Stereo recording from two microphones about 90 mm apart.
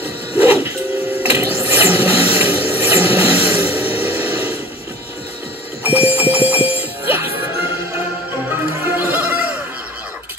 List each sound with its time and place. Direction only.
0.4 s music: 25° right (ahead or behind)
1.2 s printer: 25° right (ahead or behind)
1.6 s a sound: 20° right (ahead or behind)
5.9 s jingle bell: 20° right (ahead or behind)
8.9 s bleat: 25° right (ahead or behind)